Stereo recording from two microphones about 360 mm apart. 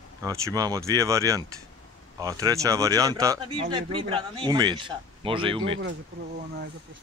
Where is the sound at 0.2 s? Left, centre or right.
Centre.